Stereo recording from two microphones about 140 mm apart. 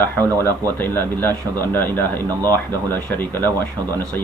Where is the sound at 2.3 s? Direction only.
25° right (ahead or behind).